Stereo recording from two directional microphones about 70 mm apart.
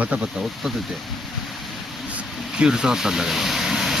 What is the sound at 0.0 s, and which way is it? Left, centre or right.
Speech, centre.